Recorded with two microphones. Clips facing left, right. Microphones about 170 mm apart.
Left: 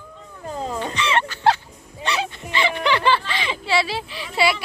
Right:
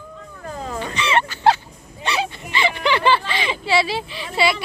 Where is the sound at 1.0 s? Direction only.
10° right (ahead or behind).